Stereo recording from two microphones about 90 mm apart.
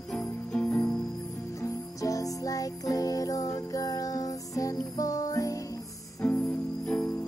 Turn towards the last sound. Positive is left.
turn(degrees=10)  # may be behind; listen again after turning